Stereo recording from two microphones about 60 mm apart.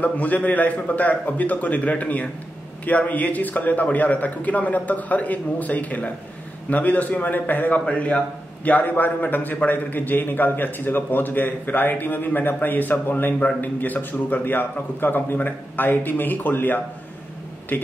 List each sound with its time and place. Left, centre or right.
0.0 s a man's voice: left